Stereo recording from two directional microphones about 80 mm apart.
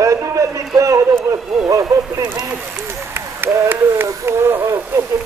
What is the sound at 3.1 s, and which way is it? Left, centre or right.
Speech, right.